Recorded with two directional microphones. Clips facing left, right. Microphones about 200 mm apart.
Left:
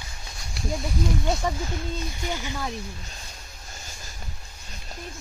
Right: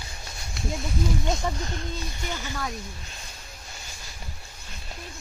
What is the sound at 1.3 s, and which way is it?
Speech, 5° left (ahead or behind).